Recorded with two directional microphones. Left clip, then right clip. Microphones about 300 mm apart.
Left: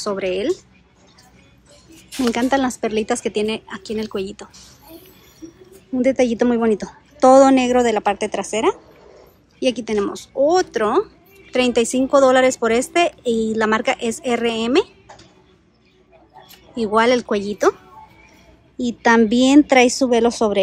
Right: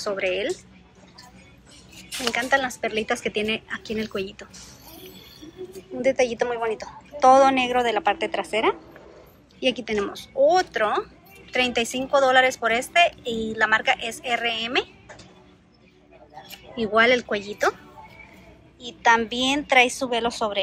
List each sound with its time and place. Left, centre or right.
0.0 s a woman's voice: centre
2.5 s a woman's voice: centre
5.9 s a woman's voice: centre
16.7 s a woman's voice: centre
18.8 s a woman's voice: centre